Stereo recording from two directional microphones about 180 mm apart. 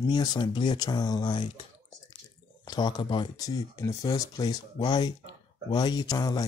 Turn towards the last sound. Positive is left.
turn(degrees=20)  # may be behind; listen again after turning